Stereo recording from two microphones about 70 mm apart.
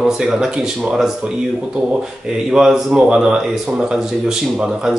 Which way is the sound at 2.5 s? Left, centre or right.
Centre.